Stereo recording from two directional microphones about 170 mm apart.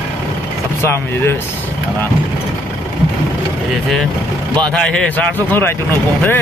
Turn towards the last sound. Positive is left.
turn(degrees=10)  # may be behind; listen again after turning